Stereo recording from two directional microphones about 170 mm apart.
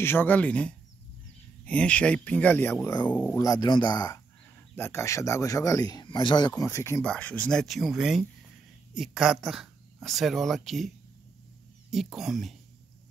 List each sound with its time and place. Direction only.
0.0 s speech: 10° left (ahead or behind)
3.3 s speech: 20° left (ahead or behind); by 10.9 s centre (ahead or behind)
11.9 s speech: centre (ahead or behind)